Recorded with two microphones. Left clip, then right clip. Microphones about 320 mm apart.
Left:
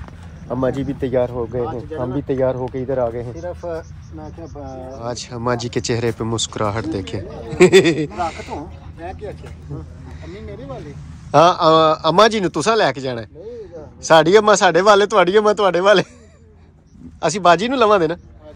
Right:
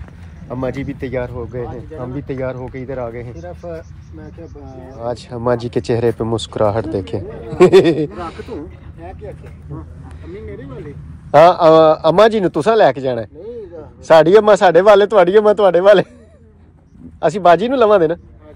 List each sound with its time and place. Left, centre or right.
0.5 s speech: centre
3.4 s speech: left
5.0 s speech: centre
11.3 s speech: centre
17.2 s speech: centre